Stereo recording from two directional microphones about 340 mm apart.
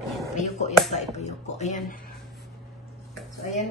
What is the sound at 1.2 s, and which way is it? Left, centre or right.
Speech, centre.